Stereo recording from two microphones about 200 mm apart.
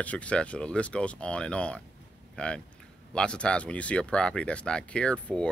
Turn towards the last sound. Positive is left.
turn(degrees=5)  # may be behind; listen again after turning